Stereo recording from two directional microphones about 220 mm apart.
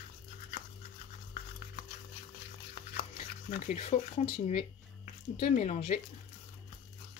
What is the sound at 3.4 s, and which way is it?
Speech, 35° left (ahead or behind).